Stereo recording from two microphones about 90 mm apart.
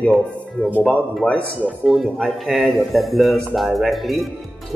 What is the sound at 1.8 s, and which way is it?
Speech, centre (ahead or behind).